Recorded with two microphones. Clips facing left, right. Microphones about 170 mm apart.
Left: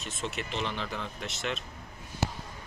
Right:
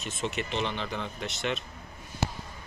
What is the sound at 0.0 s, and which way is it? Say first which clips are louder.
Speech: right 3 dB; centre (ahead or behind).